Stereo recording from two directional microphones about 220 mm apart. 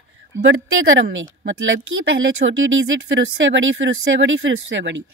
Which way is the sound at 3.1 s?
60° right (ahead or behind).